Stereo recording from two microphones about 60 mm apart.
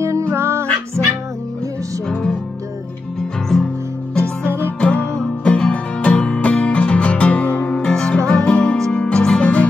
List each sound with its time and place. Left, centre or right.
0.0 s music: right
3.2 s music: centre
4.5 s music: right
4.7 s music: centre
7.7 s music: centre